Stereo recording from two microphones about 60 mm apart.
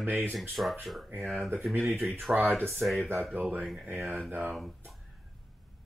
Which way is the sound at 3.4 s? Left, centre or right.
Right.